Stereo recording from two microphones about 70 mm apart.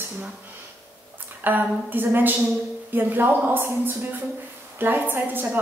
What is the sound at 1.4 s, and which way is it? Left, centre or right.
A woman's voice, right.